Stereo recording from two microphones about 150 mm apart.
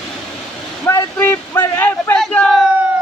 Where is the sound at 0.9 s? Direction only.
15° left (ahead or behind).